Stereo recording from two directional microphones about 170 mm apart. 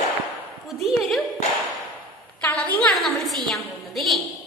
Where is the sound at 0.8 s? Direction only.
Centre (ahead or behind).